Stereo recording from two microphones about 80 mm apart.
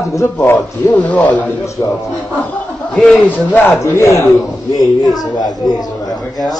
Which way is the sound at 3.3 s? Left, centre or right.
Left.